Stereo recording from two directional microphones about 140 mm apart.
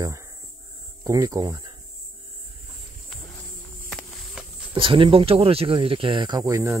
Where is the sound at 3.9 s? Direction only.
Centre (ahead or behind).